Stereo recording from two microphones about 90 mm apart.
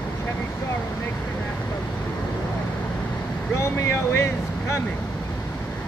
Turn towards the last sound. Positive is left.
turn(degrees=30)  # may be behind; listen again after turning